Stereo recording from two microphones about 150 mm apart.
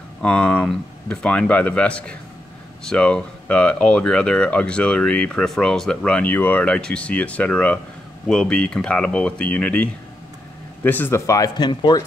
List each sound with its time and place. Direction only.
0.2 s speech: 5° left (ahead or behind); by 12.0 s 30° left (ahead or behind)